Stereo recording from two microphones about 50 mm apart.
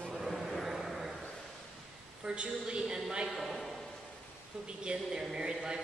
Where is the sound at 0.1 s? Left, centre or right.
Centre.